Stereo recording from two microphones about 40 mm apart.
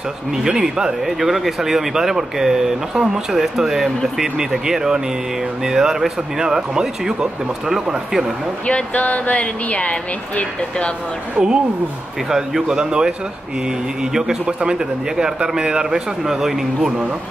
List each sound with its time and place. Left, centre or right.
0.3 s speech: centre
1.0 s speech: centre
8.6 s speech: left
11.3 s speech: right
14.1 s speech: centre